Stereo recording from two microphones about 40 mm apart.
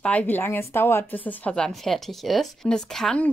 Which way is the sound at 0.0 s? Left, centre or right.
Left.